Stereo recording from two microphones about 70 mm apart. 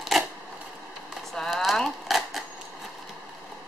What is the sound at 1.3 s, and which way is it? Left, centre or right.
Speech, centre.